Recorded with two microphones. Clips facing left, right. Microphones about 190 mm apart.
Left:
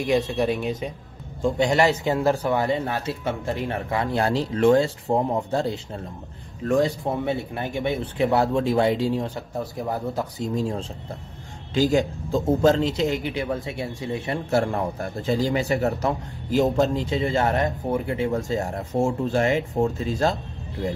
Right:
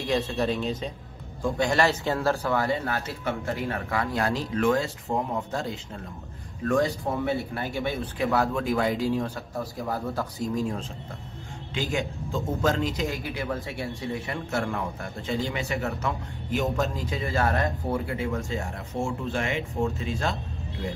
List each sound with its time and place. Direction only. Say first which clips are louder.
0.3 s speech: left 3 dB; 15° left (ahead or behind)
18.5 s speech: left 7 dB; 40° left (ahead or behind)